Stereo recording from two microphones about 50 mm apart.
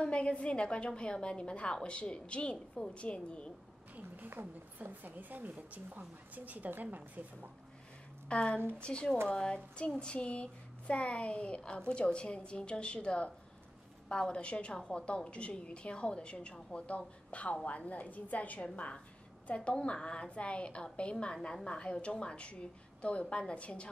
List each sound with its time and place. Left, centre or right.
0.0 s speech: left
4.8 s a woman's voice: right
8.3 s a woman's voice: left